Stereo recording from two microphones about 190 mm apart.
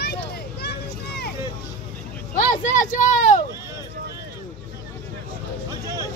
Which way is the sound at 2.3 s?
40° left (ahead or behind).